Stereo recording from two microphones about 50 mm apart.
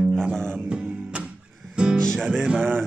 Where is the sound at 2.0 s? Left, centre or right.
Centre.